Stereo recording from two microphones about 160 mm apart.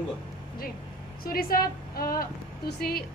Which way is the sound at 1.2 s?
70° left (ahead or behind).